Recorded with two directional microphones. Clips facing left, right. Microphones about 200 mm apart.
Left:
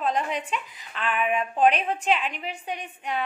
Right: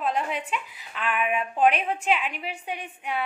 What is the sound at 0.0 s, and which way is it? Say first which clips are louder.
A woman's voice: left 1 dB; 5° right (ahead or behind).